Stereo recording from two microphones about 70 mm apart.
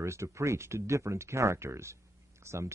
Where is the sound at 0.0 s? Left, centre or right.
Right.